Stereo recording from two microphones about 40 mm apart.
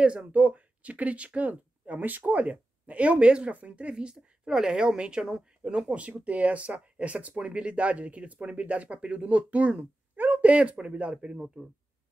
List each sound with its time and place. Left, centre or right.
0.0 s speech: right
10.1 s a sound: right
10.8 s speech: right